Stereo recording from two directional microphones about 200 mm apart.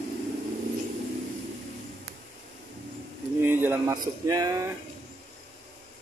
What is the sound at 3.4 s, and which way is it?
A man's voice, 10° right (ahead or behind).